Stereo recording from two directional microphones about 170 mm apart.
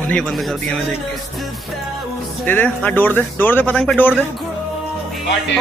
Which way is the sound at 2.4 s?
10° left (ahead or behind).